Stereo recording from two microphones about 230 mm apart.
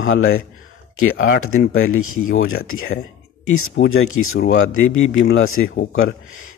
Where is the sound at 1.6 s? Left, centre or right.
Left.